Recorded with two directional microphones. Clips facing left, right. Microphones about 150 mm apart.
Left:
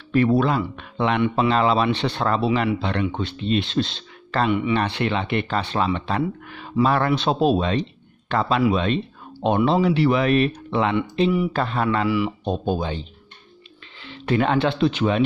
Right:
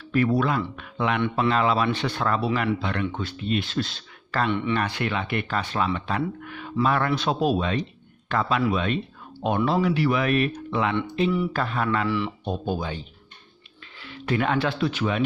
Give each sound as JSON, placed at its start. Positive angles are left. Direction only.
{"t": 0.1, "sound": "speech", "side_deg": 25}
{"t": 4.5, "sound": "speech", "side_deg": 10}
{"t": 4.7, "sound": "speech", "side_deg": 25}
{"t": 14.0, "sound": "speech", "side_deg": 30}